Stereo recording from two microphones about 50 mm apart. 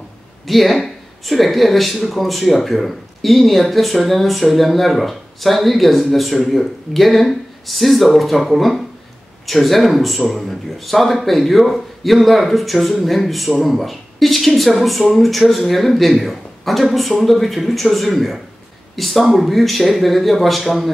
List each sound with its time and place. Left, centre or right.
0.5 s speech: centre